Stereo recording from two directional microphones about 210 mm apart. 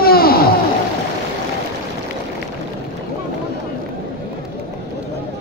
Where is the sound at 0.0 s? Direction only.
45° left (ahead or behind).